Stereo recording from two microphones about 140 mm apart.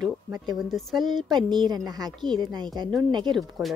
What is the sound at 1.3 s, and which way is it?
A woman's voice, 35° right (ahead or behind).